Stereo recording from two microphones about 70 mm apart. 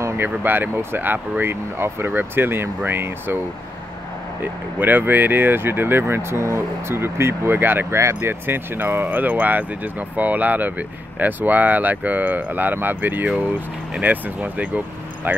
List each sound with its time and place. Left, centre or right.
0.2 s speech: right
4.7 s speech: right